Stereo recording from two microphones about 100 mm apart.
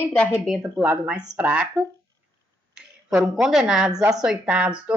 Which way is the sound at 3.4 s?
10° right (ahead or behind).